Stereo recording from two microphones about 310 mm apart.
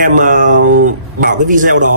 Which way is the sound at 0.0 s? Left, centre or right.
Right.